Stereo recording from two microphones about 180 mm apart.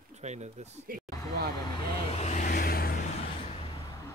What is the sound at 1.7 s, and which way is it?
Vehicle, 30° left (ahead or behind).